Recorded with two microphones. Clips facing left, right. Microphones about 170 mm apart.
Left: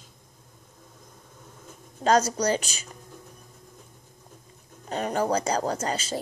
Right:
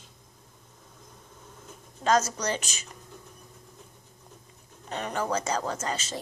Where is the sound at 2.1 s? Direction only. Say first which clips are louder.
Left 3 dB; 35° left (ahead or behind).